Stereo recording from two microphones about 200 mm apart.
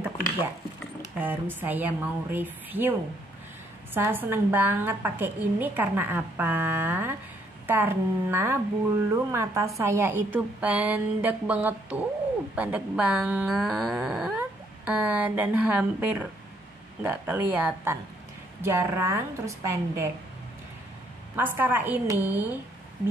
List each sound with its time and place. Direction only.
1.1 s a woman's voice: 10° right (ahead or behind)
3.9 s a woman's voice: 10° right (ahead or behind)
21.4 s a woman's voice: 10° right (ahead or behind)